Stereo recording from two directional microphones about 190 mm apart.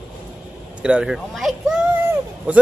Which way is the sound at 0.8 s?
5° right (ahead or behind).